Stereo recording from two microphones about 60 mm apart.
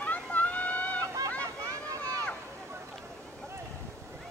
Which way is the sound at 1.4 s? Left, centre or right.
Right.